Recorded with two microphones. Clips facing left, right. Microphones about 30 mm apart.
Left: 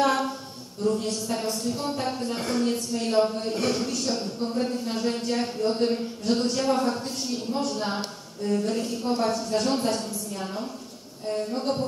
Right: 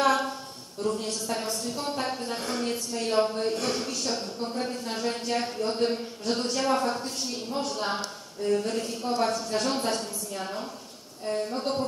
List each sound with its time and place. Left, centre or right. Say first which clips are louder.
0.0 s a sound: left 1 dB; centre
0.8 s a woman's voice: left 3 dB; centre
3.6 s speech: left 3 dB; centre
6.3 s a woman's voice: left 2 dB; centre